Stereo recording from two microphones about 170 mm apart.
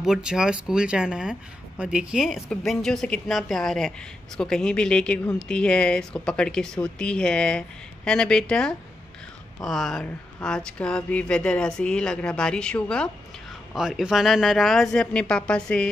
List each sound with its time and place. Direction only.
0.0 s a woman's voice: 5° right (ahead or behind)